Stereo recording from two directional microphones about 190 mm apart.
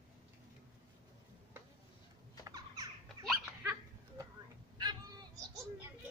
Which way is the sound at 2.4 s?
20° right (ahead or behind).